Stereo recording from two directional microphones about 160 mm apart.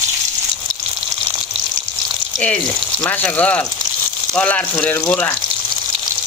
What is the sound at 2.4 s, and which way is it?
Speech, 5° left (ahead or behind).